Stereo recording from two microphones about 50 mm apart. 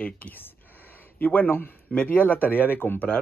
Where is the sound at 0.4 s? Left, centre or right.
Left.